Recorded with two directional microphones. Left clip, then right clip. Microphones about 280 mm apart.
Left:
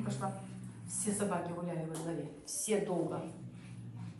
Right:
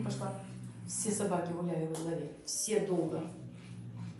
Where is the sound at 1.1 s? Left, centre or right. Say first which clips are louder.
Right 2 dB; centre.